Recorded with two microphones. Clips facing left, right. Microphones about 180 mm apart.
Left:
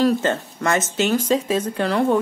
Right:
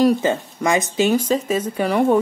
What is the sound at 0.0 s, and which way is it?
A woman's voice, 10° right (ahead or behind).